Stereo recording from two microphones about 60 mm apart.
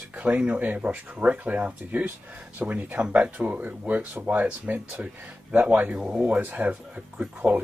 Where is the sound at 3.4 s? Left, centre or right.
Right.